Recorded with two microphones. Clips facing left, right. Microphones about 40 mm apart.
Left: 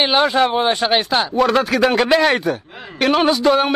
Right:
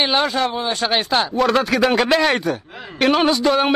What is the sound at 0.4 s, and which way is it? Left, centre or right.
Speech, left.